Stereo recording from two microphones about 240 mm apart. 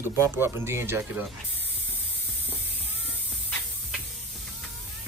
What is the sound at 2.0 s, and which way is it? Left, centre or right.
Music, left.